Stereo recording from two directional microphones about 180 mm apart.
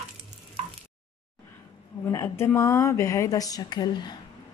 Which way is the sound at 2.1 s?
15° left (ahead or behind).